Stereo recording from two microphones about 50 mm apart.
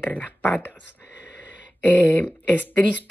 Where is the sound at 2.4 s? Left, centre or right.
Left.